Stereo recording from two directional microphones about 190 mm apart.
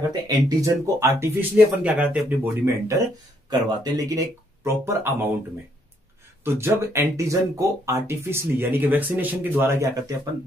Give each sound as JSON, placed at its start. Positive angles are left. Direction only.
{"t": 0.3, "sound": "speech", "side_deg": -15}
{"t": 6.4, "sound": "speech", "side_deg": -15}